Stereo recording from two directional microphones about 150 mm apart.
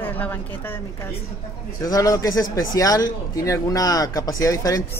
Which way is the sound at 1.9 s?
25° left (ahead or behind).